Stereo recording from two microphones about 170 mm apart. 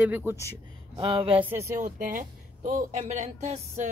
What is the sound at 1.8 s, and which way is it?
Speech, 50° right (ahead or behind).